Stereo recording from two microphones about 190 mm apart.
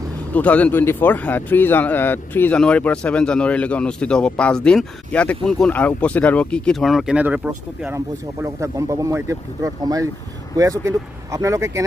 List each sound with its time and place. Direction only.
0.3 s speech: 10° left (ahead or behind); by 11.8 s 15° right (ahead or behind)